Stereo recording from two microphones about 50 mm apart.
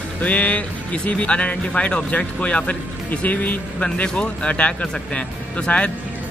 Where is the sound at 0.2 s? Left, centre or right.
Left.